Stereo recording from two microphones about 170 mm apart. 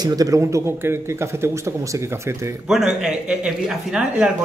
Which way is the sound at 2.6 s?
5° right (ahead or behind).